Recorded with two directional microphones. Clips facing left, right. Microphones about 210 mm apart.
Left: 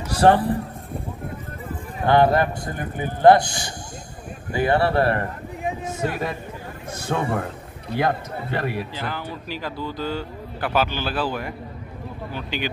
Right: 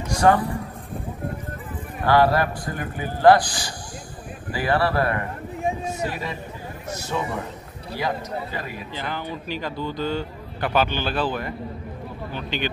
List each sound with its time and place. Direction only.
0.2 s a man's voice: 30° left (ahead or behind)
2.0 s a man's voice: 20° left (ahead or behind)
6.9 s a man's voice: 55° left (ahead or behind)
8.9 s speech: 5° left (ahead or behind)